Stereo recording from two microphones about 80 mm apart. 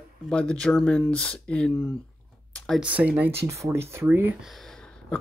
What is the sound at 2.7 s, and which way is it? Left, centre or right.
Speech, centre.